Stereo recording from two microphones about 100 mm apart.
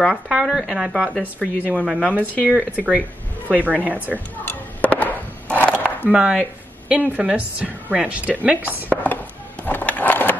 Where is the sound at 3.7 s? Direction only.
15° left (ahead or behind).